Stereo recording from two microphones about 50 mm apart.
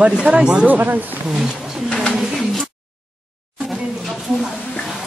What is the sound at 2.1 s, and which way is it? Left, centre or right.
Bird, centre.